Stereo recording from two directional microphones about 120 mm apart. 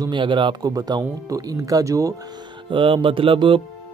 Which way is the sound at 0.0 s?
40° right (ahead or behind).